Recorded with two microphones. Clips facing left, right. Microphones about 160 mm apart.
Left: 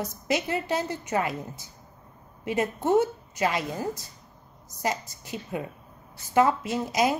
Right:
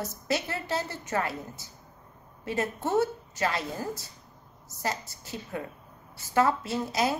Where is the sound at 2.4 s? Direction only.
15° left (ahead or behind).